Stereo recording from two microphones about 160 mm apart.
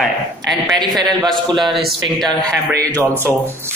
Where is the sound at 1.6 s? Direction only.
Centre (ahead or behind).